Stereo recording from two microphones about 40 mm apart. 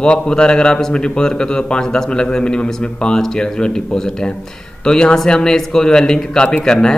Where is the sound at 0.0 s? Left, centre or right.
Left.